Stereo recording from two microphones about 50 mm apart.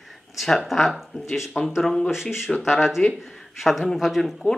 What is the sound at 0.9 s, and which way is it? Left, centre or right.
Speech, centre.